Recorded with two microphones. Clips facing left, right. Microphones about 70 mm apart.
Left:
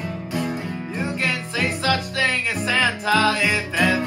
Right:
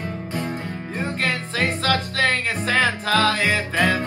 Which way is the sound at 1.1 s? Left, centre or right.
Right.